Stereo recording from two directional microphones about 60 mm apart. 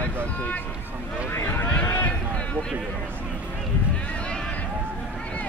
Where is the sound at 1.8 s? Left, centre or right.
Left.